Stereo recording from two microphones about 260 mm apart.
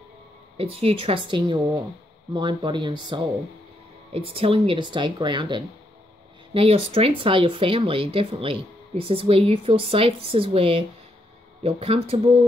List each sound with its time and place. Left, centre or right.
0.6 s speech: right